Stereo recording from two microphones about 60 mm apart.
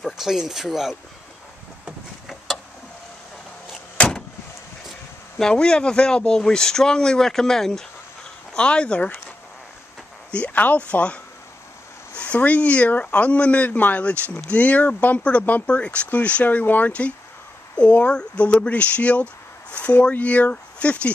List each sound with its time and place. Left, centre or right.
0.0 s speech: centre
1.9 s a sound: centre
5.4 s speech: centre
10.3 s speech: left
12.2 s speech: left